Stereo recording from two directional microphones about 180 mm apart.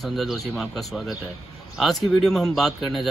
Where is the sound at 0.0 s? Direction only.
Centre (ahead or behind).